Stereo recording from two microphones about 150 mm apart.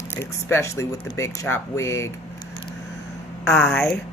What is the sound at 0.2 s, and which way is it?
Speech, 15° left (ahead or behind).